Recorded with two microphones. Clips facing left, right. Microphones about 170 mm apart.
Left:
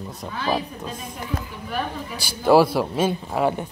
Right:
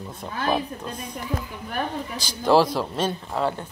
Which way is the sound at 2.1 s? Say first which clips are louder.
Left 3 dB; 10° left (ahead or behind).